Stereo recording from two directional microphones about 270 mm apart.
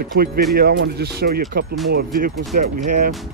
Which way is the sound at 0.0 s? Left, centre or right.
Right.